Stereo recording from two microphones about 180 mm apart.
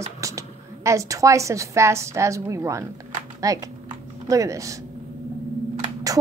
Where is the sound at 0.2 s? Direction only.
15° right (ahead or behind).